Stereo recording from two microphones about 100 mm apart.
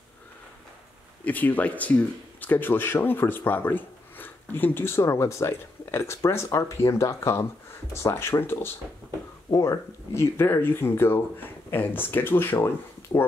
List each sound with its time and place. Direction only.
1.2 s speech: 15° left (ahead or behind)